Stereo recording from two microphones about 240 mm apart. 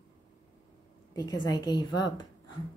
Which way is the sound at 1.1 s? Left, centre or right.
Centre.